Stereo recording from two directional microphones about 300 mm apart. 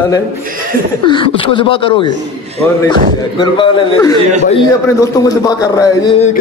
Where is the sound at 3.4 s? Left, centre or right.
Centre.